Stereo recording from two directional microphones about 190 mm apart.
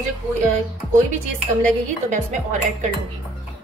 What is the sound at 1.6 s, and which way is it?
Speech, 45° right (ahead or behind).